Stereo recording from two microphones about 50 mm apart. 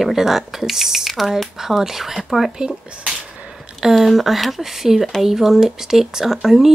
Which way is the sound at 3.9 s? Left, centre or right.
Centre.